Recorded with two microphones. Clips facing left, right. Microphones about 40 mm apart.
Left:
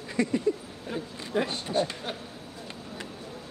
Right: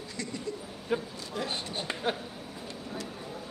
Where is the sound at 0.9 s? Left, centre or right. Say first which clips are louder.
Left 2 dB; centre.